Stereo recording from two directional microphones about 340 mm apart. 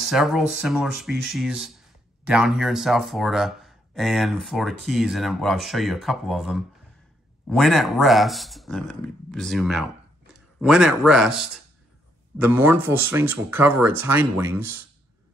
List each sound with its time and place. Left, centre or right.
0.0 s speech: centre